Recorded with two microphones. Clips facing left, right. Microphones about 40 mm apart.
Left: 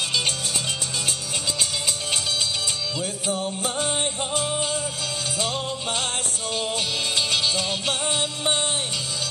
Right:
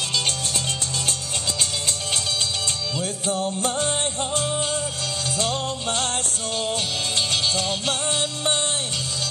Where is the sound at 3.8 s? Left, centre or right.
Centre.